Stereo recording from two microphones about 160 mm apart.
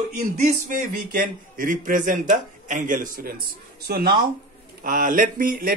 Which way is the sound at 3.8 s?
70° right (ahead or behind).